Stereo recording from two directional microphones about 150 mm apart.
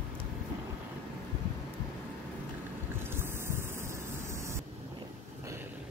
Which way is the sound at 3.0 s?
15° right (ahead or behind).